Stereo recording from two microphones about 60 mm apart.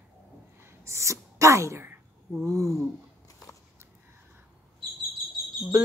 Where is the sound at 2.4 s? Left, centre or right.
Right.